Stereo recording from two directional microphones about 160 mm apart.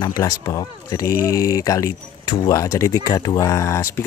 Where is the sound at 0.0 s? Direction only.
20° left (ahead or behind).